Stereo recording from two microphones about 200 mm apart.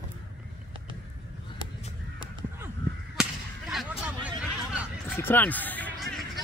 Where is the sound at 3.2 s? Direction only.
5° right (ahead or behind).